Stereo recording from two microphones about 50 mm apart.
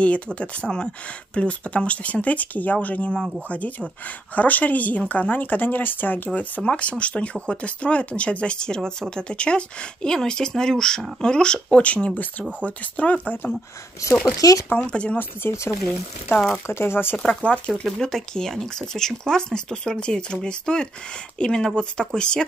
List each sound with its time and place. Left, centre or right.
0.0 s speech: left
6.8 s speech: left
14.8 s speech: left
15.7 s speech: left
17.2 s speech: centre
17.5 s speech: left
17.9 s speech: centre